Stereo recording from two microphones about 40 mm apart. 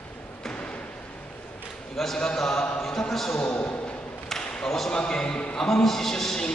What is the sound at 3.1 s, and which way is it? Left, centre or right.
Speech, centre.